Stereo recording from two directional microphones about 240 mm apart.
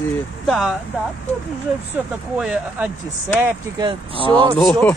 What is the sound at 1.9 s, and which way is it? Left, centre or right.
Speech, centre.